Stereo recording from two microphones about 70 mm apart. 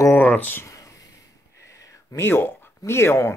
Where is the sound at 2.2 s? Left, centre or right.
Left.